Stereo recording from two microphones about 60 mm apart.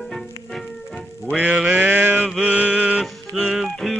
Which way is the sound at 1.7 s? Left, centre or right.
Right.